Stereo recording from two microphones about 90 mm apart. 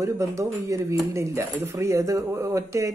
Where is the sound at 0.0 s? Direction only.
35° right (ahead or behind).